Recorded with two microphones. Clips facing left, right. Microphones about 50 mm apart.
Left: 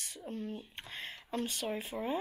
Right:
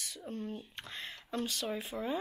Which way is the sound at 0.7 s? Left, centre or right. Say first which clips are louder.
Even; centre.